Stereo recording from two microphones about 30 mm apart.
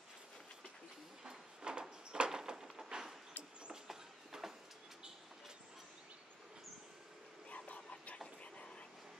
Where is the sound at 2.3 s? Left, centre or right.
Right.